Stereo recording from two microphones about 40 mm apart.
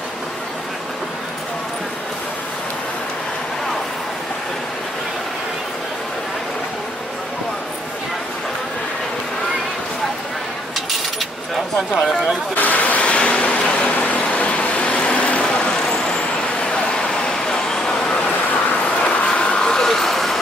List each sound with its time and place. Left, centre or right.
12.5 s vehicle: left
13.8 s vehicle: left; by 18.2 s centre
18.5 s vehicle: left
19.0 s vehicle: left
19.9 s vehicle: centre